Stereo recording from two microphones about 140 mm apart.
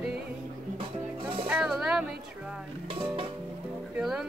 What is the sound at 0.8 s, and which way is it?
Music, 40° right (ahead or behind).